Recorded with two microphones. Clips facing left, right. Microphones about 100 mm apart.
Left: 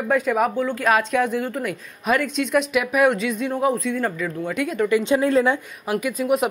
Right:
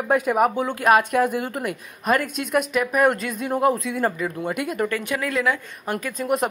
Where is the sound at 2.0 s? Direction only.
Centre (ahead or behind).